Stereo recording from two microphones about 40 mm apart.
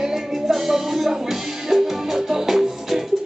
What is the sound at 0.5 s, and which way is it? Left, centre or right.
Music, centre.